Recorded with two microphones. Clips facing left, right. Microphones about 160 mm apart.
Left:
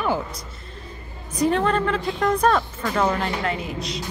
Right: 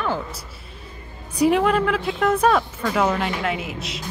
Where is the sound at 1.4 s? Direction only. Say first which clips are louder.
Right 3 dB; 10° right (ahead or behind).